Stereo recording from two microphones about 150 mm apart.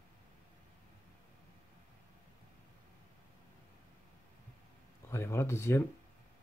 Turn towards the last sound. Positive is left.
turn(degrees=15)  # may be behind; listen again after turning